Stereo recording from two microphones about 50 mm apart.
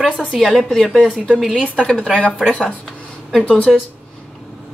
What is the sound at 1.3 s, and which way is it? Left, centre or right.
Speech, centre.